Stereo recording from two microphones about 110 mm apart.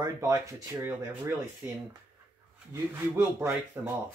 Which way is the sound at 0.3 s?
20° right (ahead or behind).